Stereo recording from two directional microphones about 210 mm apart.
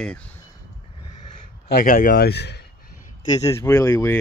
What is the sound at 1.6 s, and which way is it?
Speech, 40° left (ahead or behind).